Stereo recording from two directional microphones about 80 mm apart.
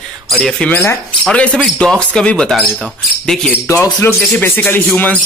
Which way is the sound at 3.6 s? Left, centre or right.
Left.